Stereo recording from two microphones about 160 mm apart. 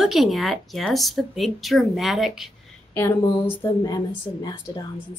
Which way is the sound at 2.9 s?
15° left (ahead or behind).